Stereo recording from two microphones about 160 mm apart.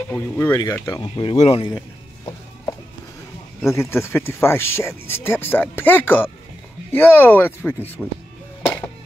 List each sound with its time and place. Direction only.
0.5 s speech: 20° left (ahead or behind); by 1.7 s 35° left (ahead or behind)
1.7 s music: 20° left (ahead or behind)
3.6 s speech: 15° left (ahead or behind)